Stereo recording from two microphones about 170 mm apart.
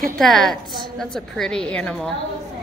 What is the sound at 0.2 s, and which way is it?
A woman's voice, centre (ahead or behind).